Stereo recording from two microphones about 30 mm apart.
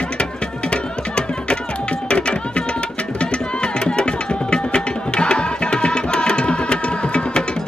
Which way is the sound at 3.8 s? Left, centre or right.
Left.